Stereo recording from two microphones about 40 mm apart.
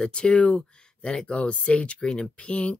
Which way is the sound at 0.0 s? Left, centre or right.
Left.